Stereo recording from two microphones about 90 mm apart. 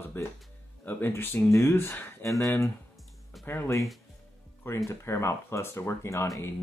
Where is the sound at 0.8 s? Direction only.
25° left (ahead or behind).